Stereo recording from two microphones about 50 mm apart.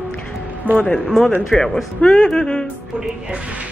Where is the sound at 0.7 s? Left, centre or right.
Centre.